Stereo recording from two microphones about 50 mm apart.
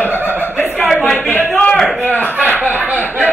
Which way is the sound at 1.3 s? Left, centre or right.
Left.